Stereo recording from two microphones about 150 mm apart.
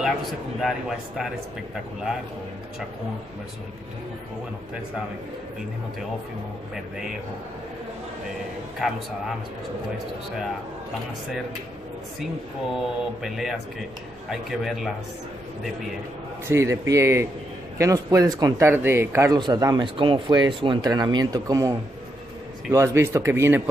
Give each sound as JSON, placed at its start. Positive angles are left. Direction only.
{"t": 0.6, "sound": "mantra", "side_deg": 0}
{"t": 6.7, "sound": "mantra", "side_deg": -5}
{"t": 8.8, "sound": "mantra", "side_deg": 0}
{"t": 12.7, "sound": "mantra", "side_deg": 0}
{"t": 16.4, "sound": "speech", "side_deg": -20}
{"t": 19.3, "sound": "speech", "side_deg": -25}